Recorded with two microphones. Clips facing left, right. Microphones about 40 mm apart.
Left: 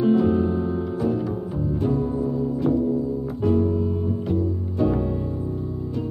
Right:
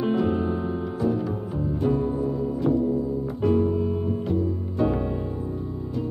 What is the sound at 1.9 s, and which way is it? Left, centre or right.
Music, centre.